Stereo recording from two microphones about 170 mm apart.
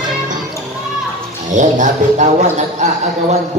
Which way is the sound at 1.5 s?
45° right (ahead or behind).